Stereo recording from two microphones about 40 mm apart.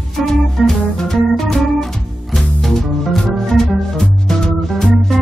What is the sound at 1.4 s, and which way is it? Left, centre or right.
Organ, centre.